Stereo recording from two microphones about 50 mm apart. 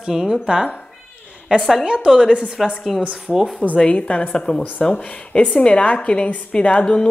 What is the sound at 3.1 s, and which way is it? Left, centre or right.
Speech, centre.